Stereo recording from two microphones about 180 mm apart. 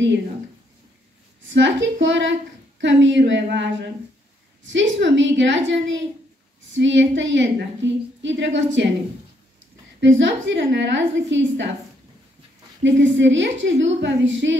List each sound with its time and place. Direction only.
1.5 s a woman's voice: 90° right
9.9 s a woman's voice: 90° right
12.8 s a woman's voice: 90° right